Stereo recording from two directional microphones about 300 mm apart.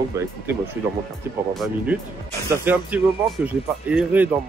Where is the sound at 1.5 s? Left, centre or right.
Centre.